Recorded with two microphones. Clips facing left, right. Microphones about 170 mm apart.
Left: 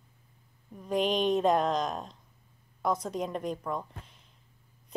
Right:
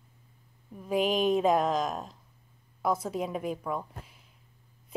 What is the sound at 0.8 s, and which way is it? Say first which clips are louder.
Speech: right 1 dB; 5° right (ahead or behind).